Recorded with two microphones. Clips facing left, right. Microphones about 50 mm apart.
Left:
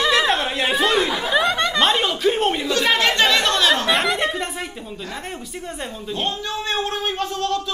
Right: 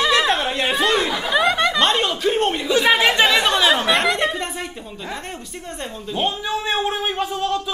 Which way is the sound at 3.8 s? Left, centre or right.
Centre.